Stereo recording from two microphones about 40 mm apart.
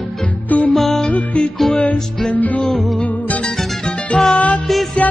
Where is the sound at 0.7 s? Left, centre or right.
Centre.